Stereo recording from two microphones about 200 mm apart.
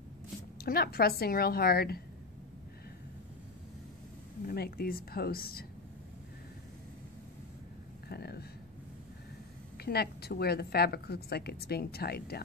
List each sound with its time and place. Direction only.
0.6 s a woman's voice: 50° left (ahead or behind)
4.5 s a woman's voice: 50° left (ahead or behind)
8.1 s a sound: 55° left (ahead or behind)
9.8 s a woman's voice: 50° left (ahead or behind)